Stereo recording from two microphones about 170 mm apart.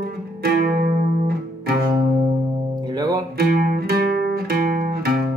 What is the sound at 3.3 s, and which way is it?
Music, 55° right (ahead or behind).